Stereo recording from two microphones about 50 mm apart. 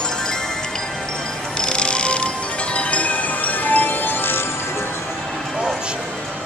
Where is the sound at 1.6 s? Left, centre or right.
Centre; by 4.4 s left.